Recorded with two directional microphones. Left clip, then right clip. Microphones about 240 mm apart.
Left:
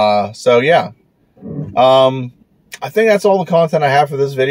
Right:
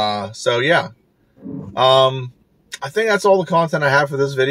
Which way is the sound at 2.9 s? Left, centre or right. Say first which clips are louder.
Left 3 dB; centre.